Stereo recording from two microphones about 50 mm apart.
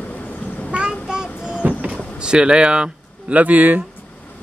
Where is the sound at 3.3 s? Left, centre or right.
Right.